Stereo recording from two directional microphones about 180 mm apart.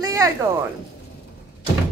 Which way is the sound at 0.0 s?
20° right (ahead or behind).